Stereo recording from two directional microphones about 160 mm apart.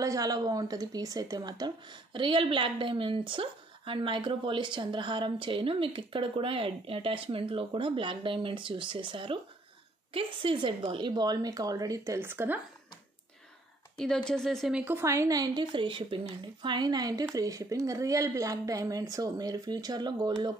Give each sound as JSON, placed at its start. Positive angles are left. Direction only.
{"t": 0.0, "sound": "a woman's voice", "side_deg": -20}
{"t": 13.9, "sound": "speech", "side_deg": 5}